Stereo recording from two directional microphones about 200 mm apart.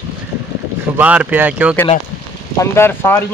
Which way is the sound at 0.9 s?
10° right (ahead or behind).